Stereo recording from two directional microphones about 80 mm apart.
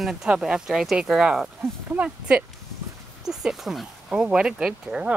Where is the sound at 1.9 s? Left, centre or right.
Centre.